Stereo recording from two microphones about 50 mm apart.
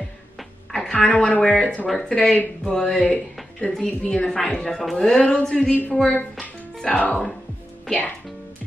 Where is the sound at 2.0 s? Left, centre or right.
Centre.